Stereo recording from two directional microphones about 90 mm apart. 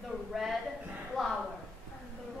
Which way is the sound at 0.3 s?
Centre (ahead or behind).